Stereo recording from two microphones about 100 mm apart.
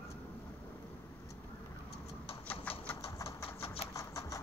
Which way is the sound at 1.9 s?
75° left (ahead or behind).